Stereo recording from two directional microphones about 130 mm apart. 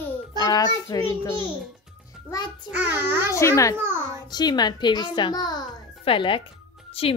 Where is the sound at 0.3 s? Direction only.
30° left (ahead or behind).